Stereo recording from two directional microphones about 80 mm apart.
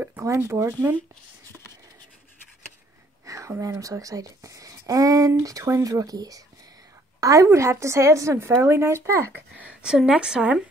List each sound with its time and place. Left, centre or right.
0.2 s speech: right
3.3 s a sound: right
3.8 s a woman's voice: right
7.4 s speech: right
9.8 s a woman's voice: centre